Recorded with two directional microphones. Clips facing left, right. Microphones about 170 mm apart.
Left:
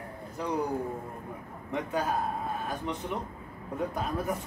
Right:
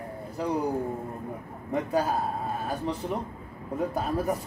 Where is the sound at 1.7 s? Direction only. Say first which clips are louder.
Right 4 dB; 35° right (ahead or behind).